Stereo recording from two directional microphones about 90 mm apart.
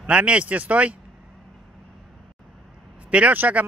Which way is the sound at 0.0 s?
10° right (ahead or behind).